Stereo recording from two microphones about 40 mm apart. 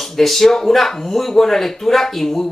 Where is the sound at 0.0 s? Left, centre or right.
Centre.